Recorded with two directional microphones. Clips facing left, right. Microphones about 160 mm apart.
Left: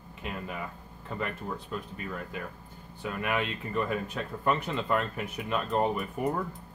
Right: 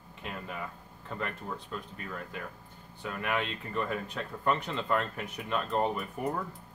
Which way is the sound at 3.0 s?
5° left (ahead or behind).